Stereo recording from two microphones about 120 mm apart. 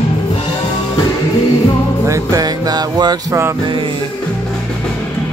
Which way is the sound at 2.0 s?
25° right (ahead or behind).